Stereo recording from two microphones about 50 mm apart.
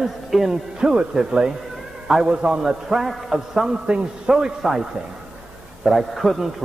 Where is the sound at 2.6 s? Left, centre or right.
Centre.